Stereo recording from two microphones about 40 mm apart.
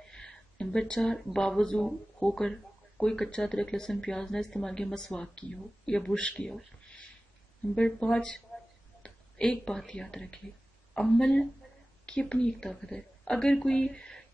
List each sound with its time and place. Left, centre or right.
0.1 s a sound: centre
1.1 s speech: centre
7.7 s speech: left
9.0 s a sound: centre
9.8 s speech: centre
12.6 s speech: centre